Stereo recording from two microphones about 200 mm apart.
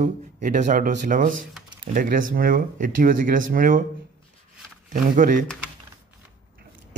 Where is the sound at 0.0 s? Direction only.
35° right (ahead or behind).